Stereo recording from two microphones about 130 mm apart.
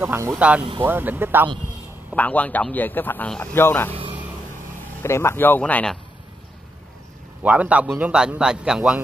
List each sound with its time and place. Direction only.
0.0 s speech: 20° right (ahead or behind)
0.4 s a man's voice: 10° right (ahead or behind)
2.1 s speech: 10° left (ahead or behind)
5.0 s speech: 20° left (ahead or behind)
7.4 s a man's voice: 10° right (ahead or behind)